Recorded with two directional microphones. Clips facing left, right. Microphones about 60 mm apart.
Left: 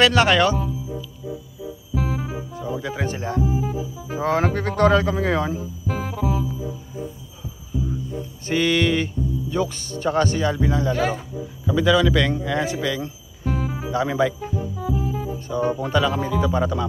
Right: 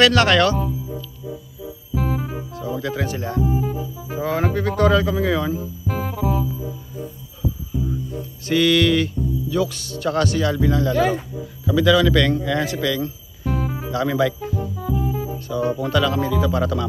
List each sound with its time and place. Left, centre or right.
0.0 s speech: centre
2.0 s music: centre
3.0 s speech: left
3.4 s music: centre
4.2 s speech: left
5.9 s music: centre
8.5 s speech: left
13.4 s music: centre
13.9 s speech: left
14.6 s music: centre
15.3 s music: left
15.8 s speech: left